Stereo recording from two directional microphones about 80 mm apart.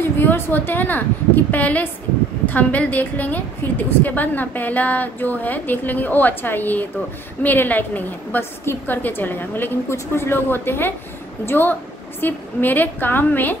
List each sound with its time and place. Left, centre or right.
0.0 s a woman's voice: left